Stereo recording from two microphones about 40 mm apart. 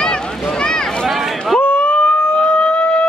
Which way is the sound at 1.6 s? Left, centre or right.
Left.